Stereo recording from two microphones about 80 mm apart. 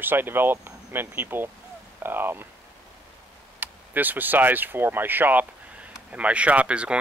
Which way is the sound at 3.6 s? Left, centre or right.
Right.